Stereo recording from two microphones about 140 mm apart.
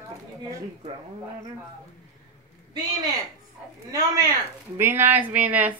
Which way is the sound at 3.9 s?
25° right (ahead or behind).